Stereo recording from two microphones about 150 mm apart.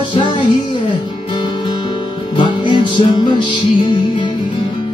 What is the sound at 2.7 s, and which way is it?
Music, 30° left (ahead or behind).